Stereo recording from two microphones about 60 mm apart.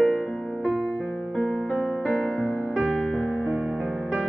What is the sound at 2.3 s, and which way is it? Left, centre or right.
Music, left.